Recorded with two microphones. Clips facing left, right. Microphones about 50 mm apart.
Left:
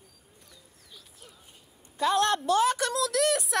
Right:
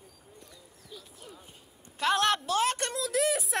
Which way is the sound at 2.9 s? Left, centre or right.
Left.